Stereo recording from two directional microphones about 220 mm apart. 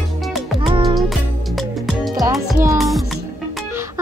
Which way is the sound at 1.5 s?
Centre (ahead or behind).